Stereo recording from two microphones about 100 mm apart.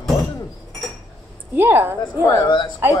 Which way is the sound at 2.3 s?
45° left (ahead or behind).